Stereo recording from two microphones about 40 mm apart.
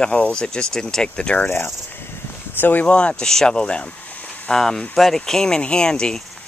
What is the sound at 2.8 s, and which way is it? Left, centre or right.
Speech, left.